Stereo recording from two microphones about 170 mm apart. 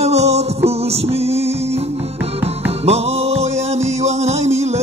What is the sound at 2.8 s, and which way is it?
Music, 35° right (ahead or behind).